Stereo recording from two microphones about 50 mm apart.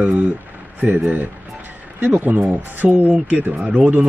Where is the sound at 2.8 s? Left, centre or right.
Right.